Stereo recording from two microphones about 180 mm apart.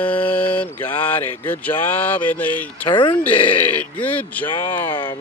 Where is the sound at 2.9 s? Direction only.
25° left (ahead or behind).